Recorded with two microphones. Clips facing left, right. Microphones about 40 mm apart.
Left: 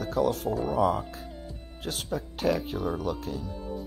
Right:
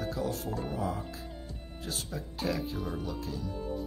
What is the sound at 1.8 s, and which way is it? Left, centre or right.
Speech, left.